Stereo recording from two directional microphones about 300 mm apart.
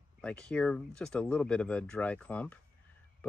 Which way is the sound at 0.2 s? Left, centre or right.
Centre.